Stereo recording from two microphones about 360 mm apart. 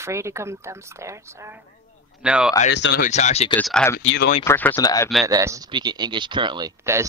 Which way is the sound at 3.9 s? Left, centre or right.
Left.